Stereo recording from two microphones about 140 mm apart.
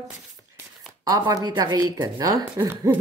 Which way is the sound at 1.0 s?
25° right (ahead or behind).